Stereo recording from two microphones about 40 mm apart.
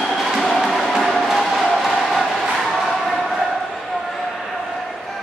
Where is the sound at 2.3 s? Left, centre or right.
Centre.